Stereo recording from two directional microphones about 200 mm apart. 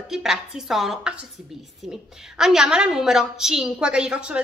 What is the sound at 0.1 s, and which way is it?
A woman's voice, centre (ahead or behind).